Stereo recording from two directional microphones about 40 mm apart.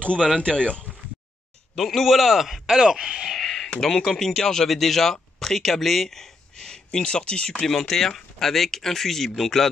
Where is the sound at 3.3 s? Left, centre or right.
Centre.